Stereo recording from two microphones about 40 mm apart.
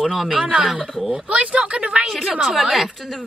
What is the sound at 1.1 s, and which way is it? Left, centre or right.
A woman's voice, right.